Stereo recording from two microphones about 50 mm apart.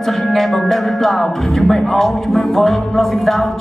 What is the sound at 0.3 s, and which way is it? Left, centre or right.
Music, centre.